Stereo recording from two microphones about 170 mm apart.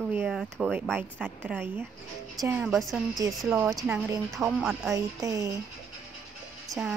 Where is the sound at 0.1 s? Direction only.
5° right (ahead or behind).